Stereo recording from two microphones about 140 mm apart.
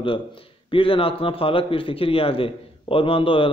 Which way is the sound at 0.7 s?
40° left (ahead or behind).